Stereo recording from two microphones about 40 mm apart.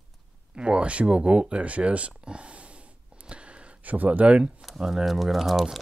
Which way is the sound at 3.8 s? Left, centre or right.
Right.